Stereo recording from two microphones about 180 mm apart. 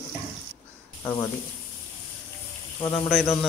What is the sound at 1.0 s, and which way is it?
Speech, 15° left (ahead or behind).